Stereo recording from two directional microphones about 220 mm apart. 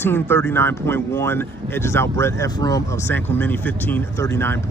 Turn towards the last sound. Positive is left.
turn(degrees=10)  # may be behind; listen again after turning